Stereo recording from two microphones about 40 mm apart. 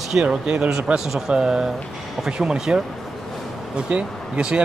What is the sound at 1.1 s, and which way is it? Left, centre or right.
Speech, centre.